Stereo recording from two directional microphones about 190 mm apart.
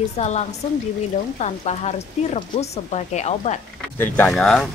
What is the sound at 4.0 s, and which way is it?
Speech, 5° left (ahead or behind).